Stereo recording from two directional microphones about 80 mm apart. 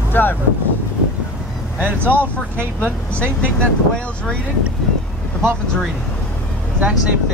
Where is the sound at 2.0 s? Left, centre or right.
Right.